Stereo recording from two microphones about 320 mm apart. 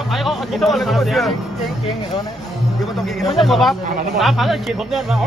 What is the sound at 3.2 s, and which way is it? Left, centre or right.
A man's voice, centre.